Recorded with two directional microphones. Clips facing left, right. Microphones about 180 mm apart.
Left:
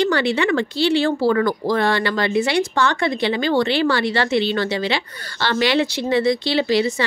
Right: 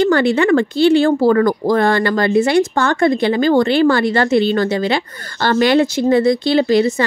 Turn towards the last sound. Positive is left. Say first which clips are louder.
# right 5 dB
turn(degrees=-50)  # may be behind; listen again after turning